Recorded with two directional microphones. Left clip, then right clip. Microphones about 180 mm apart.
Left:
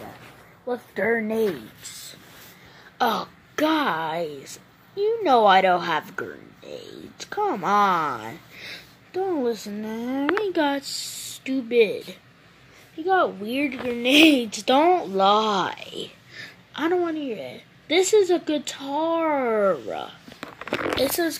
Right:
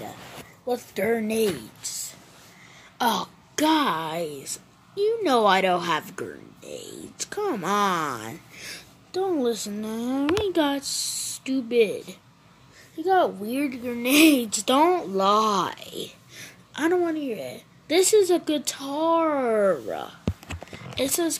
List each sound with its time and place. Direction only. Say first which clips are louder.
0.7 s speech: left 1 dB; 5° right (ahead or behind)
3.0 s speech: left 1 dB; 30° right (ahead or behind); by 10.8 s 10° right (ahead or behind)
11.0 s speech: right 3 dB; 75° right (ahead or behind)
11.3 s speech: left 2 dB; 10° right (ahead or behind)
15.3 s speech: even; 50° right (ahead or behind)
15.6 s speech: left 1 dB; 10° right (ahead or behind)